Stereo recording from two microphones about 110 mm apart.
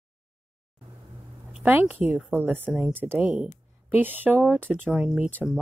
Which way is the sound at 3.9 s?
15° right (ahead or behind).